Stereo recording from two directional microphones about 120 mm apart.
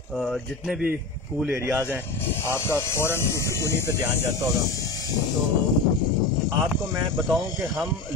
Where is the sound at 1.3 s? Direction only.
15° right (ahead or behind).